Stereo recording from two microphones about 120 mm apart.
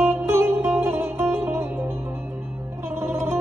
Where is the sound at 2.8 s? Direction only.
20° right (ahead or behind).